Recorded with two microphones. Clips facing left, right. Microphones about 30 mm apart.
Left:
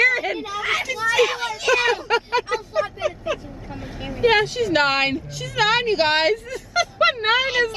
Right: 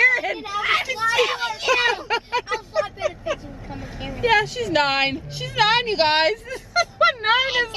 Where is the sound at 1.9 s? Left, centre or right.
Centre.